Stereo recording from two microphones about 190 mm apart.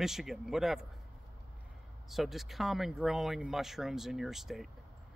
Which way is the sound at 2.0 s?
Centre (ahead or behind).